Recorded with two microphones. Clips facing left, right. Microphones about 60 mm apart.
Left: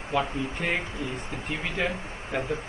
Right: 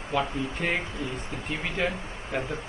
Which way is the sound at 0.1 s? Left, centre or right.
Centre.